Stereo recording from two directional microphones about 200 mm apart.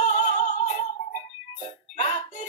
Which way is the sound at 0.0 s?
35° left (ahead or behind).